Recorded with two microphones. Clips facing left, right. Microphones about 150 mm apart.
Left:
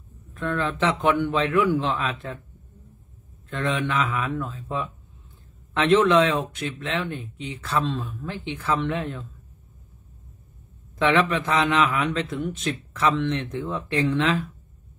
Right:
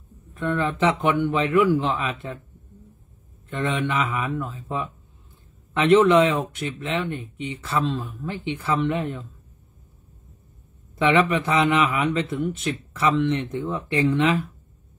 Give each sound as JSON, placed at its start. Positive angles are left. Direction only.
{"t": 0.3, "sound": "a man's voice", "side_deg": -10}
{"t": 3.4, "sound": "speech", "side_deg": 0}
{"t": 11.0, "sound": "speech", "side_deg": -5}